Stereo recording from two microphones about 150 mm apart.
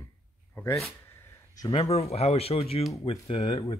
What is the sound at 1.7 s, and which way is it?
Speech, 40° left (ahead or behind).